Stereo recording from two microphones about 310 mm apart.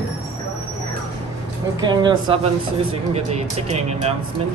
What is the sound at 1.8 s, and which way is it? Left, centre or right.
Speech, centre.